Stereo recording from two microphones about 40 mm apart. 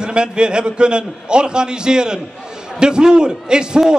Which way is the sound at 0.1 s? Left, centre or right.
Right.